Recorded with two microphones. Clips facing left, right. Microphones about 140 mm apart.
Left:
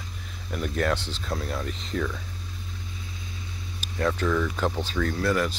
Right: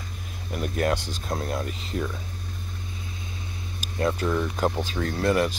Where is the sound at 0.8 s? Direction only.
10° right (ahead or behind).